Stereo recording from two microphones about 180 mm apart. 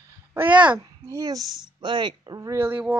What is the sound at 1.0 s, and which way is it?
Speech, 20° right (ahead or behind).